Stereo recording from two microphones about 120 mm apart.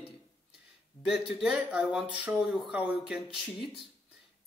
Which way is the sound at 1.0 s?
5° right (ahead or behind).